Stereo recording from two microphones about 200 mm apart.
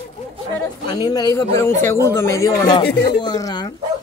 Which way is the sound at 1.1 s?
20° left (ahead or behind).